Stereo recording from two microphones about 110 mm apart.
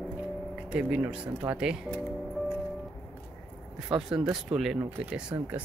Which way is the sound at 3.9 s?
5° right (ahead or behind).